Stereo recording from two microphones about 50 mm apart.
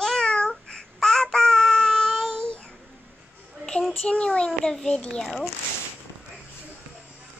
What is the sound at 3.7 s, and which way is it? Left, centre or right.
A child's voice, centre.